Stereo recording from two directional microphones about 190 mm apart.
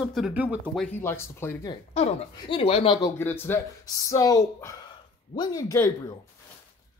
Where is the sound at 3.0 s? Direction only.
15° left (ahead or behind).